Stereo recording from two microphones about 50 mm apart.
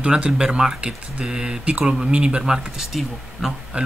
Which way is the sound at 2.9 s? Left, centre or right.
Centre.